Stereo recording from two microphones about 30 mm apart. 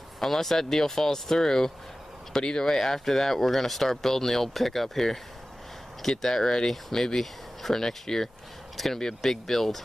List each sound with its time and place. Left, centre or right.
0.2 s speech: centre
2.7 s speech: centre